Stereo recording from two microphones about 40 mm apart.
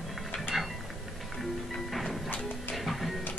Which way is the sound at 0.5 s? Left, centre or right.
Centre.